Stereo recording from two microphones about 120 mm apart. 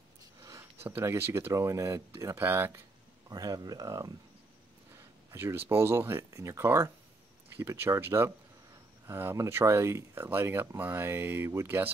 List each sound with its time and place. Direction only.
0.4 s speech: 25° right (ahead or behind)
3.3 s speech: 30° right (ahead or behind)